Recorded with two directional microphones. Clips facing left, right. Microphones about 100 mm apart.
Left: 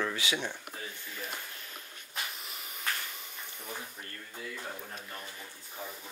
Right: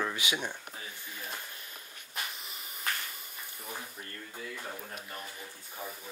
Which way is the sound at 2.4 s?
Centre (ahead or behind).